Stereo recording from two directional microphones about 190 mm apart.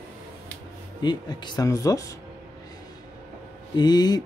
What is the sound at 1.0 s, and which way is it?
Speech, 25° left (ahead or behind).